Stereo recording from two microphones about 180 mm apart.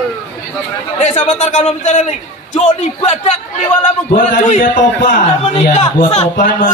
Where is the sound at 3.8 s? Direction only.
45° left (ahead or behind).